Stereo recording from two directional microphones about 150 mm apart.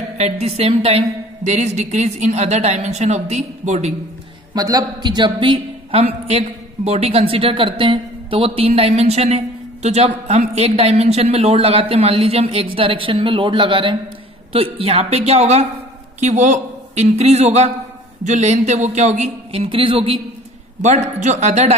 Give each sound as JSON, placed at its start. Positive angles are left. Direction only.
{"t": 0.2, "sound": "a woman's voice", "side_deg": -45}
{"t": 4.6, "sound": "a man's voice", "side_deg": -25}
{"t": 20.8, "sound": "a woman's voice", "side_deg": -50}